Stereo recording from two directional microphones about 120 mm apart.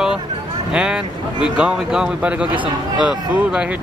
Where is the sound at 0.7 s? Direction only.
5° right (ahead or behind).